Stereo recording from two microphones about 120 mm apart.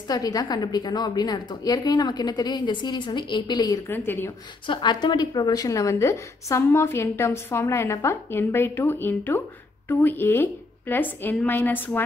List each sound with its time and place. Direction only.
0.1 s a woman's voice: 30° left (ahead or behind)
3.9 s a woman's voice: 15° left (ahead or behind)
4.6 s a woman's voice: 40° left (ahead or behind); by 12.0 s 15° left (ahead or behind)